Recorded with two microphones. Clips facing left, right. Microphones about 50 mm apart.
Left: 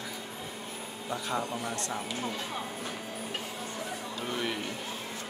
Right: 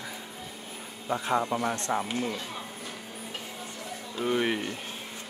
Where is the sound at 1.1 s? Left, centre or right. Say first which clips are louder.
Right 6 dB; right.